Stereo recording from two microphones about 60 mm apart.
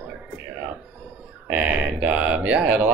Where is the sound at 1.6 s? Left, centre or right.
Right.